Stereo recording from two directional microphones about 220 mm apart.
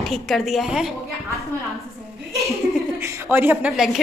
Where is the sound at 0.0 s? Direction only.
Centre (ahead or behind).